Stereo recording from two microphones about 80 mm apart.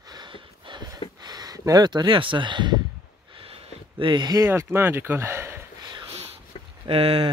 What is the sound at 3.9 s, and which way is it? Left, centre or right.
Speech, right.